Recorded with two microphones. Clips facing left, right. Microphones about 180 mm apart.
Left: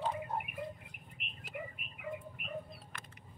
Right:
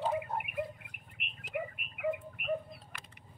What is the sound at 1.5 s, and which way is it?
Tick-tock, 65° right (ahead or behind).